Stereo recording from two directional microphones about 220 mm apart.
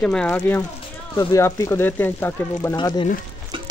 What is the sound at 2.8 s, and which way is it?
Speech, 20° left (ahead or behind).